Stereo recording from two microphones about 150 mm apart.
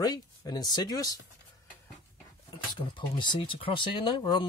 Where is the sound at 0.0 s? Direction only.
25° left (ahead or behind).